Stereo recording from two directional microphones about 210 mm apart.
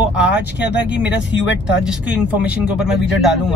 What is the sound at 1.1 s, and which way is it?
Speech, 60° left (ahead or behind).